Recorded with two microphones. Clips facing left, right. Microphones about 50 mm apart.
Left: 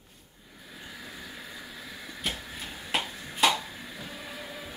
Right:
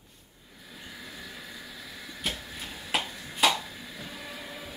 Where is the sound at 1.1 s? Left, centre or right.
Left.